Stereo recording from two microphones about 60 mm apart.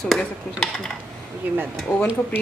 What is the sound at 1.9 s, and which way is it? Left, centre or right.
Speech, centre.